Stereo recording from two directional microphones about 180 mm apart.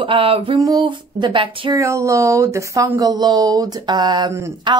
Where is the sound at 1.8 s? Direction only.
15° right (ahead or behind).